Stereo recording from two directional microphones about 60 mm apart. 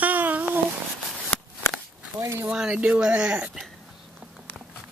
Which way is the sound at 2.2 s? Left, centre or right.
Right.